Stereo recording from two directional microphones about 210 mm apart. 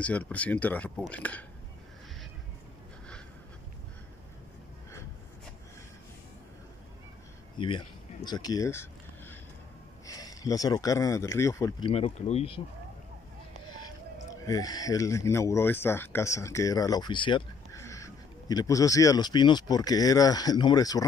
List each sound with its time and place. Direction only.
0.0 s speech: 5° left (ahead or behind)
7.5 s a sound: 25° left (ahead or behind)
10.0 s speech: 15° left (ahead or behind)
11.9 s speech: 30° left (ahead or behind)
13.7 s speech: 20° left (ahead or behind)